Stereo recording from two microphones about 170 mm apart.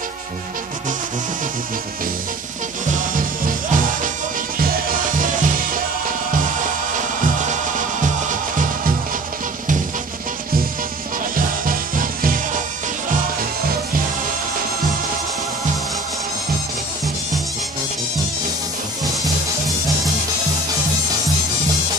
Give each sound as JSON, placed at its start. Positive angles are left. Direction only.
{"t": 2.9, "sound": "music", "side_deg": -50}
{"t": 11.3, "sound": "music", "side_deg": -55}